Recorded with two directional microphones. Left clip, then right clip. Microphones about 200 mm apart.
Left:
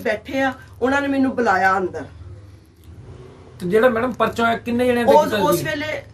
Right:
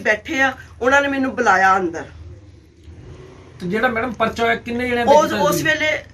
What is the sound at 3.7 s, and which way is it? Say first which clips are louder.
Speech: left 3 dB; 65° left (ahead or behind).